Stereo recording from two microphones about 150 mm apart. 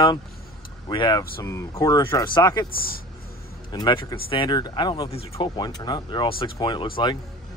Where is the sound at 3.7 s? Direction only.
30° left (ahead or behind).